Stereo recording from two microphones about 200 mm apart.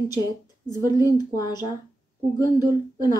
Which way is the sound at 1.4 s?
20° left (ahead or behind).